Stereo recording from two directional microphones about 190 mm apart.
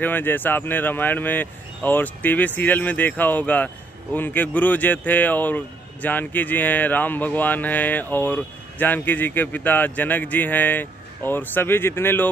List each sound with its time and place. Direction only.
0.0 s speech: 10° left (ahead or behind)